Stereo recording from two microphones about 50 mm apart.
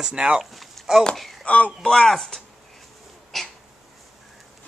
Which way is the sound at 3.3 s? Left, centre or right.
Centre.